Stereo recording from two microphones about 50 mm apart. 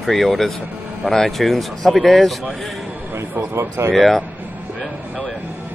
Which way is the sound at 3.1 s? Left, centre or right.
Right.